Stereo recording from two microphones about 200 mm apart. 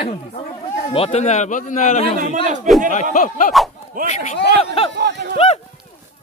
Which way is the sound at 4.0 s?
45° right (ahead or behind).